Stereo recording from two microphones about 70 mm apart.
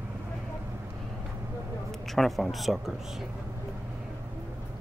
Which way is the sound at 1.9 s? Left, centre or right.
Centre.